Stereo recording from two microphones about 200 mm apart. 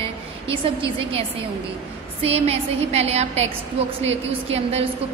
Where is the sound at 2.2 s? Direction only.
30° right (ahead or behind).